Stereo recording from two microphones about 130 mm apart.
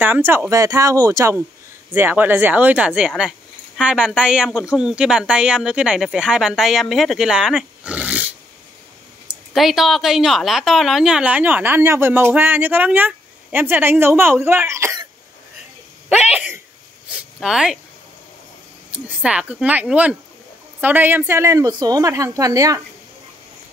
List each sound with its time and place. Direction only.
0.0 s a woman's voice: 15° right (ahead or behind)
3.1 s speech: centre (ahead or behind)
9.3 s a woman's voice: centre (ahead or behind); by 15.0 s 20° right (ahead or behind)
16.3 s speech: 10° right (ahead or behind)
18.9 s a woman's voice: 10° right (ahead or behind); by 22.8 s 25° right (ahead or behind)